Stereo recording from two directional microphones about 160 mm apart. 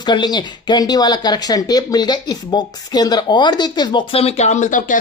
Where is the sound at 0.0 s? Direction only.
25° left (ahead or behind).